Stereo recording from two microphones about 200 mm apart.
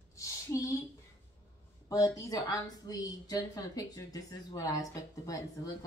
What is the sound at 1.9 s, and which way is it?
A woman's voice, 15° left (ahead or behind).